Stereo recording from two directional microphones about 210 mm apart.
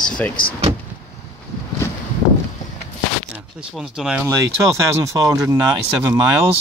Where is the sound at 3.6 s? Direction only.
Centre (ahead or behind).